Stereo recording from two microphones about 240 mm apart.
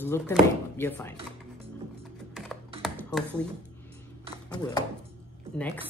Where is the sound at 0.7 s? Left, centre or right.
Centre.